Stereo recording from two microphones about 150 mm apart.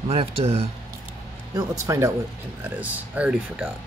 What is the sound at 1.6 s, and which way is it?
Speech, 20° right (ahead or behind).